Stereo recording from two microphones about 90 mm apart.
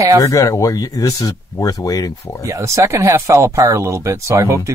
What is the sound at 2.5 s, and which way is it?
Speech, 35° right (ahead or behind).